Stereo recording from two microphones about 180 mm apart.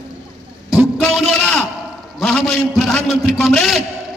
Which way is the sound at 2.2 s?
5° left (ahead or behind).